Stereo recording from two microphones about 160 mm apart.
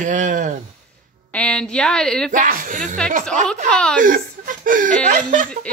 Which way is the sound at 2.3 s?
55° right (ahead or behind).